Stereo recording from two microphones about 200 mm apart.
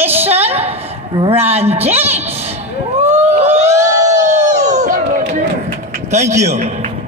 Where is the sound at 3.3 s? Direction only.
35° right (ahead or behind).